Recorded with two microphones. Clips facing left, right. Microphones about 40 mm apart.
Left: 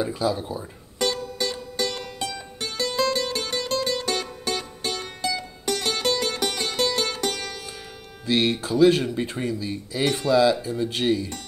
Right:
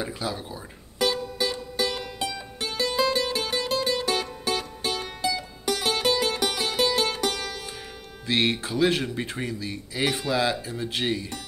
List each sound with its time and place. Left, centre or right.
0.0 s speech: centre
0.4 s music: centre
8.3 s speech: right
10.0 s speech: centre